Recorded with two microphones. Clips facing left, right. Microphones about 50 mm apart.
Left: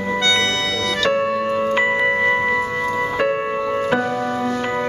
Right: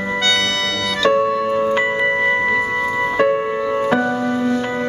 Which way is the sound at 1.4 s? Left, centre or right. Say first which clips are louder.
Right 1 dB; centre.